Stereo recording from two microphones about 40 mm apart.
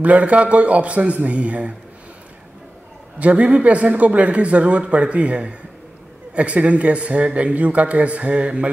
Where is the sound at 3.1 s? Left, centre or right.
Right.